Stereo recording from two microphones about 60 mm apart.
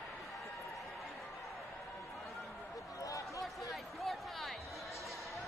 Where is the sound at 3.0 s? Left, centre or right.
Left.